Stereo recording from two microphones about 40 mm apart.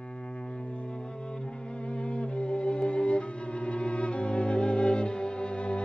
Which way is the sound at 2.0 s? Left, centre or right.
Left.